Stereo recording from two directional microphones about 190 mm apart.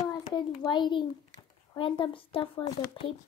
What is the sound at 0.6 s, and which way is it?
Speech, 25° left (ahead or behind).